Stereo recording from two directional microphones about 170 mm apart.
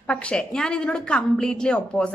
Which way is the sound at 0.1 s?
5° left (ahead or behind).